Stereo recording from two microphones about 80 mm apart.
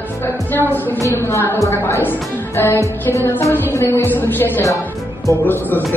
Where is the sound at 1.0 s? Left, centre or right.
Right.